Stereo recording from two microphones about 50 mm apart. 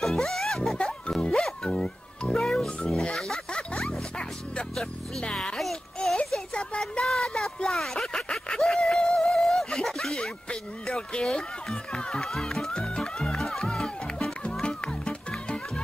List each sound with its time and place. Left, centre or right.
0.0 s music: centre
0.7 s music: left
1.3 s music: centre
1.7 s music: centre
2.3 s music: centre
5.3 s music: centre
5.6 s music: centre
6.5 s a sound: centre
10.5 s a sound: centre
11.2 s music: centre